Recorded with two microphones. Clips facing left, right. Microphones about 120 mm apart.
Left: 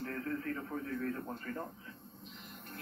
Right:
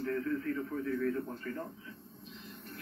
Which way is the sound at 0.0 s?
40° left (ahead or behind).